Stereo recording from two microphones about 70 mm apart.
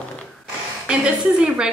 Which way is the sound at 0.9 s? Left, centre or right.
Centre.